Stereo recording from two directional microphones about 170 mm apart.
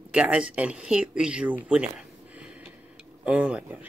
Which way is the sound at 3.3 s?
5° right (ahead or behind).